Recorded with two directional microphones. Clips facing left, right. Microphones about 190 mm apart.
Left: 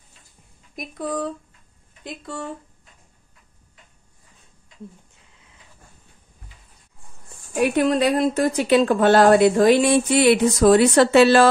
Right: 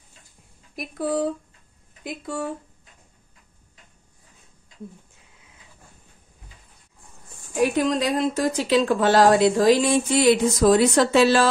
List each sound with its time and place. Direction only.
0.7 s speech: 5° right (ahead or behind)
7.7 s a woman's voice: 60° left (ahead or behind)